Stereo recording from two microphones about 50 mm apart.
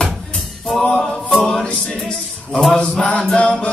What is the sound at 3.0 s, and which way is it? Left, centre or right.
Chant, centre.